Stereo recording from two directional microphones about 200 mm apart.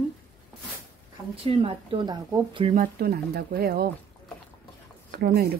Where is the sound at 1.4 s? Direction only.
25° right (ahead or behind).